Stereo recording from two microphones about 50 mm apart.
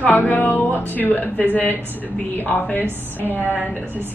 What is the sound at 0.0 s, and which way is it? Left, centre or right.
A woman's voice, left.